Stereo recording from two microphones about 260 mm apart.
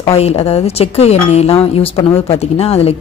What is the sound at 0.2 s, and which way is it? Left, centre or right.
A woman's voice, left.